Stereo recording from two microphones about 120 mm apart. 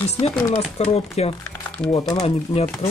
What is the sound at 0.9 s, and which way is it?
Speech, 60° left (ahead or behind).